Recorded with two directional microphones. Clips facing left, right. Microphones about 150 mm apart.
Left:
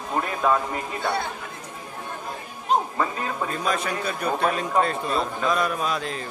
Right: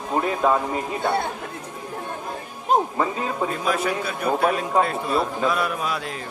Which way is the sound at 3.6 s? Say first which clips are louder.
Right 1 dB; 5° right (ahead or behind).